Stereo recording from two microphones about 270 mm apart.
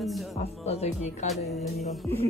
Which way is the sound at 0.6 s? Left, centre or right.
Left.